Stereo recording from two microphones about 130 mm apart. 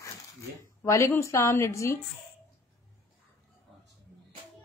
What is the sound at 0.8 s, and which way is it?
A woman's voice, 20° left (ahead or behind).